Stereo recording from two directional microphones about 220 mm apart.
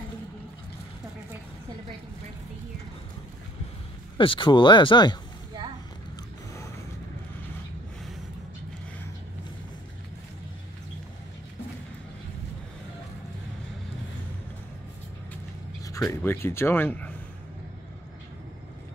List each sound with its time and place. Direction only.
4.2 s speech: 25° left (ahead or behind)
15.8 s speech: 15° left (ahead or behind)